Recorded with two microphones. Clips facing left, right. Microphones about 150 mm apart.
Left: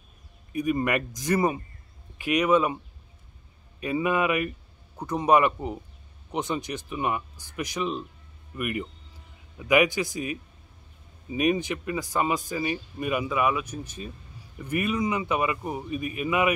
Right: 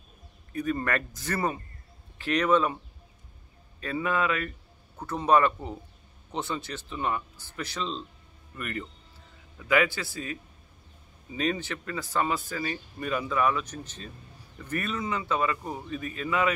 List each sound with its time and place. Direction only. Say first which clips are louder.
0.5 s speech: left 3 dB; 15° left (ahead or behind)
3.8 s speech: left 3 dB; 15° left (ahead or behind)